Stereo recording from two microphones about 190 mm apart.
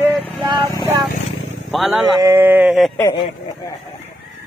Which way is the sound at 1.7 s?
Centre (ahead or behind).